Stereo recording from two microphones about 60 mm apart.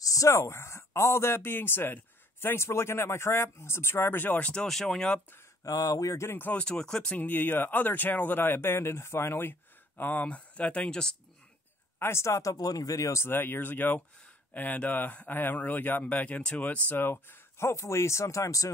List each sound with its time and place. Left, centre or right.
0.0 s speech: left
4.4 s speech: centre
4.6 s speech: centre
5.6 s speech: left
6.1 s speech: left
6.6 s speech: centre
7.2 s speech: left; by 11.1 s centre
12.0 s speech: left
13.2 s speech: left
16.9 s speech: left